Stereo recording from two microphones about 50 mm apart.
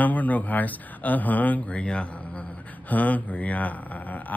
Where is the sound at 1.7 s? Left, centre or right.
Left.